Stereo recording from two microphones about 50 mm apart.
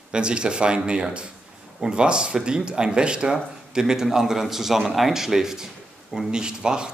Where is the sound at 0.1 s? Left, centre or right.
Centre.